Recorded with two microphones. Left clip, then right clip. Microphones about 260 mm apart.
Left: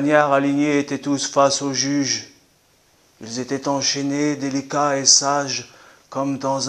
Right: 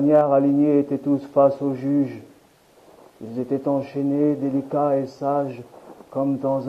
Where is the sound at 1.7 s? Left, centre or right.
Centre.